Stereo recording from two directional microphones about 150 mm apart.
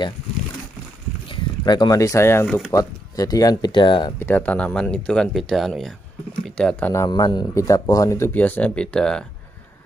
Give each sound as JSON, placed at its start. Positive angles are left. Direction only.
{"t": 1.3, "sound": "speech", "side_deg": 30}
{"t": 4.2, "sound": "speech", "side_deg": 10}
{"t": 6.4, "sound": "a sound", "side_deg": 5}
{"t": 6.9, "sound": "speech", "side_deg": 20}